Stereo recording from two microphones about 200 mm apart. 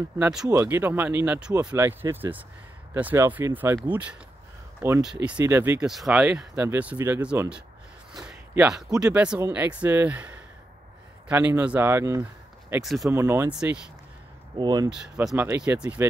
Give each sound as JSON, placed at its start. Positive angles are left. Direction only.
{"t": 0.2, "sound": "speech", "side_deg": -5}
{"t": 12.8, "sound": "speech", "side_deg": 0}
{"t": 13.1, "sound": "speech", "side_deg": -10}
{"t": 14.6, "sound": "speech", "side_deg": -20}
{"t": 14.9, "sound": "speech", "side_deg": -5}